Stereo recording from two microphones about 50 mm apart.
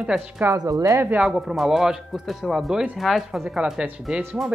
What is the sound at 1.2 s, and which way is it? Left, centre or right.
A man's voice, centre.